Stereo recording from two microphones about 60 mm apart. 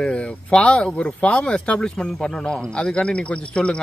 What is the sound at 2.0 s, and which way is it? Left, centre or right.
A man's voice, centre.